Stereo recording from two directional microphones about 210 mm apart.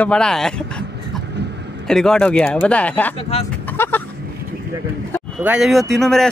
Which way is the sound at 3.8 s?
10° left (ahead or behind).